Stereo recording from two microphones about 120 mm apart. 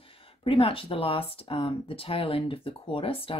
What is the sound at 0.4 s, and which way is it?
Speech, 50° left (ahead or behind).